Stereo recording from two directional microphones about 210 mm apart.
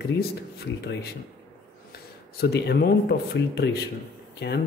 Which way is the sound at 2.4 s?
50° left (ahead or behind).